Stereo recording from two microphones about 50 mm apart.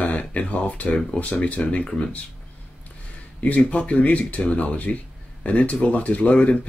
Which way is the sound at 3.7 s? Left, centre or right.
Left.